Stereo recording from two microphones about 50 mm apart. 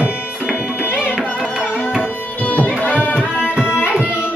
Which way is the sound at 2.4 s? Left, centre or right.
Left.